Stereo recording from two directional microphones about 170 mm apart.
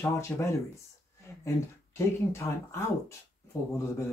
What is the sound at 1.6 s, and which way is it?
Speech, 15° left (ahead or behind).